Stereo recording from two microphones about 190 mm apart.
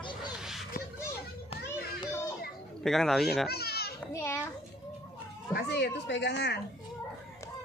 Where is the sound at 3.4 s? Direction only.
55° left (ahead or behind).